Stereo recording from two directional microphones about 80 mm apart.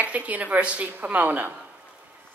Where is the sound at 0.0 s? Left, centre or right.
Centre.